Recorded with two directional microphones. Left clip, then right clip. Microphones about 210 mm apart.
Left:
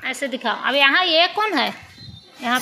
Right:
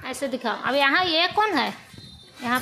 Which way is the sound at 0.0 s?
15° right (ahead or behind).